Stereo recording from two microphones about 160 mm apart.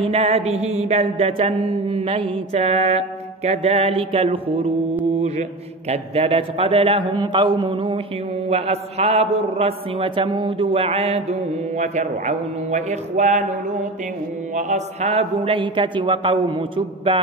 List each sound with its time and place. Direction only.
0.0 s mantra: 40° right (ahead or behind)
5.9 s mantra: 40° right (ahead or behind)
8.5 s mantra: 40° right (ahead or behind)
11.8 s a man's voice: 45° right (ahead or behind)
14.5 s mantra: 45° right (ahead or behind)